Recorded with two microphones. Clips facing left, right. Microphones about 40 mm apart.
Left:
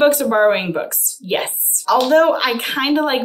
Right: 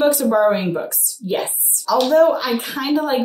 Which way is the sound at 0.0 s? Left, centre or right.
Left.